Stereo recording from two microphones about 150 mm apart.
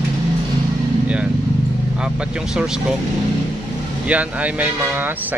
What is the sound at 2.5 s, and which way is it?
Speech, 5° right (ahead or behind).